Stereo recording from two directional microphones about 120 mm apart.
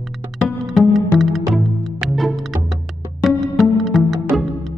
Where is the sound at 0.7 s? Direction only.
Centre (ahead or behind).